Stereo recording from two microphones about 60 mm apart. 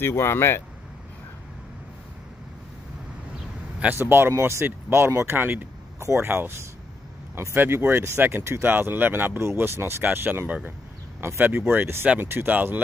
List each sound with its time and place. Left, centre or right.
0.0 s speech: left
3.9 s speech: right
5.9 s a sound: right
6.2 s speech: right
9.8 s speech: right
10.0 s speech: right
10.4 s speech: right
11.1 s speech: right
11.4 s speech: right